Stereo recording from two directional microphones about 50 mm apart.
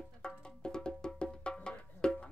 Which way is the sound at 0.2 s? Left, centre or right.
Centre.